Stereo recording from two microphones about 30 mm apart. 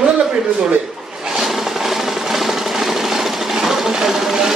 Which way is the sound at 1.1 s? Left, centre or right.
Centre.